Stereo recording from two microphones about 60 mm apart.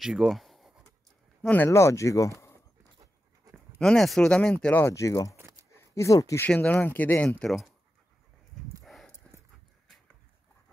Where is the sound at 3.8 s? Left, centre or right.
Centre.